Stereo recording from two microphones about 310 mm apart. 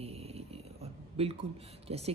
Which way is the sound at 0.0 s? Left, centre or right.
Centre.